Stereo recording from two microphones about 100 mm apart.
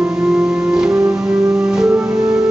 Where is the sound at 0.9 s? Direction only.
20° right (ahead or behind).